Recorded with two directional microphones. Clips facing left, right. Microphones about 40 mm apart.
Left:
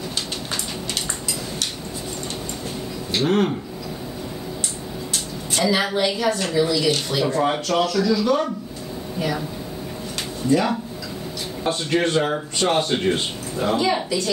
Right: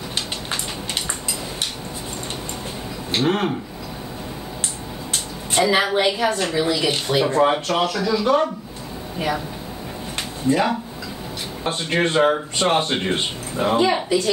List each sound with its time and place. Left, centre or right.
0.1 s a sound: right
3.1 s speech: right
5.5 s a woman's voice: right
10.1 s a sound: right
11.7 s speech: right
14.0 s a woman's voice: right